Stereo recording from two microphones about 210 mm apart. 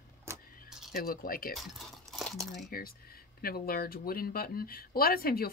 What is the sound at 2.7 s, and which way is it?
Speech, 45° left (ahead or behind).